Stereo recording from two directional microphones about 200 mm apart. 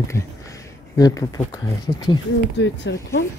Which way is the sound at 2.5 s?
65° left (ahead or behind).